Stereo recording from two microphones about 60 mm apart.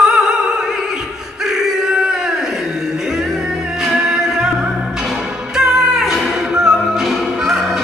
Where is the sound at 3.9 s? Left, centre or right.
Centre.